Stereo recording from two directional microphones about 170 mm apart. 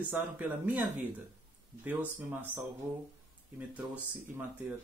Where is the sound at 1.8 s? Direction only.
10° right (ahead or behind).